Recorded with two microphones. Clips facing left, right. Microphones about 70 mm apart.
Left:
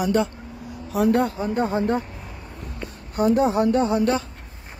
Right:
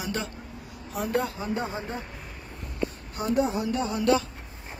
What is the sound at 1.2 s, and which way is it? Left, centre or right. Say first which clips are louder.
Speech: left 7 dB; left.